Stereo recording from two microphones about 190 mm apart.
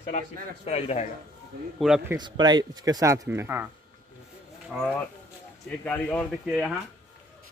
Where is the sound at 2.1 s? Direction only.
20° right (ahead or behind).